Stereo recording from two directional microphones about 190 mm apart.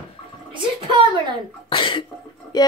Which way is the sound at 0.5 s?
25° right (ahead or behind).